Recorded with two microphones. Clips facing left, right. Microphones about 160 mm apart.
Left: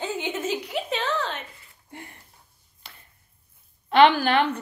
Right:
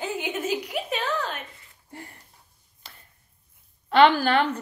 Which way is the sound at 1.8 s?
35° right (ahead or behind).